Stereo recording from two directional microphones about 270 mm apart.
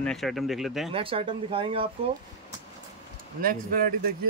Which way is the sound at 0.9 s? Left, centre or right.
Centre.